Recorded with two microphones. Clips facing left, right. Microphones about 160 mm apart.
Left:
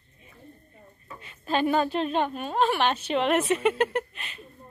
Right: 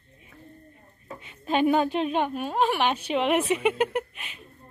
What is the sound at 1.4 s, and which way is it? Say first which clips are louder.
A woman's voice: right 2 dB; 15° right (ahead or behind).